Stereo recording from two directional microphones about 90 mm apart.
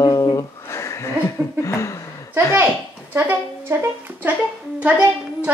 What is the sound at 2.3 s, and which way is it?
A woman's voice, 25° right (ahead or behind).